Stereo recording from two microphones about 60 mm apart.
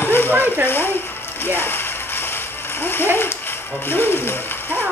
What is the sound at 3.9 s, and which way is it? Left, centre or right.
Ratchet, left.